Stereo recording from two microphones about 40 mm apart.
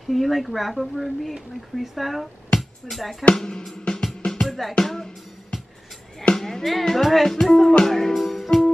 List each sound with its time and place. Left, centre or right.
0.1 s speech: centre
2.5 s music: left
2.9 s speech: centre
3.3 s music: centre
4.3 s music: centre
6.3 s speech: centre
8.1 s music: centre